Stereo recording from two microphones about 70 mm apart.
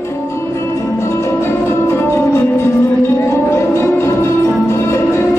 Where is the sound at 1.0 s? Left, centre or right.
Left.